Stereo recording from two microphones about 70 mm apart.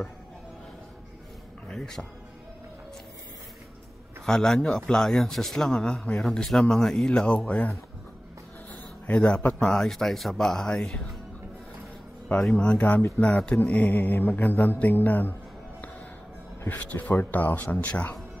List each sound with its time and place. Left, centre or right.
1.7 s speech: centre
4.3 s a man's voice: centre
9.0 s a man's voice: centre
12.4 s a man's voice: centre
13.9 s speech: left
16.6 s speech: left